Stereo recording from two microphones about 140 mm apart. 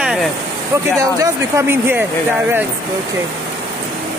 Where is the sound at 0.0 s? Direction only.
5° right (ahead or behind).